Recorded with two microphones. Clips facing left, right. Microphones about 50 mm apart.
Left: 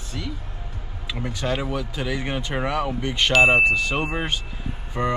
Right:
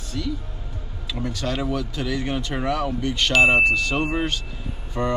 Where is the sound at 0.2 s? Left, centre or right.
Centre.